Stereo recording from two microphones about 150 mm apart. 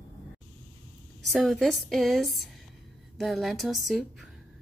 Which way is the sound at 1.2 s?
Centre (ahead or behind).